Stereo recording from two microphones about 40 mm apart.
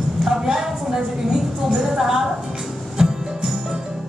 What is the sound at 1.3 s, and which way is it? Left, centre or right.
Speech, centre.